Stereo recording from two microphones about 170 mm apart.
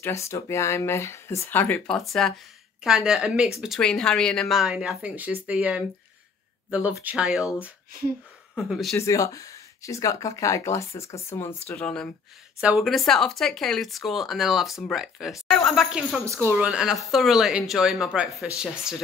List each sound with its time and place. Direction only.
0.0 s a woman's voice: 15° left (ahead or behind); by 7.4 s 5° right (ahead or behind)
8.5 s a woman's voice: 5° right (ahead or behind)
8.9 s speech: 20° left (ahead or behind)
11.7 s a woman's voice: 5° left (ahead or behind)
16.3 s speech: 15° right (ahead or behind)
16.5 s a woman's voice: 5° right (ahead or behind)